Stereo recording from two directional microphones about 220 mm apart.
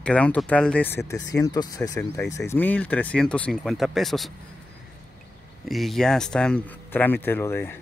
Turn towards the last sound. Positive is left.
turn(degrees=10)  # may be behind; listen again after turning